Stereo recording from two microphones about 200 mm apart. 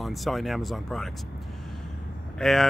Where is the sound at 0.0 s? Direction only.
Centre (ahead or behind).